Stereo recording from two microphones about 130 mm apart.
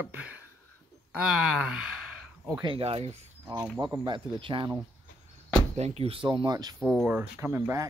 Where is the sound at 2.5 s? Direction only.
35° right (ahead or behind).